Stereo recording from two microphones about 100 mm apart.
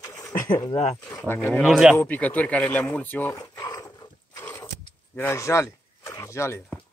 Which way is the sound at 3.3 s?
40° left (ahead or behind).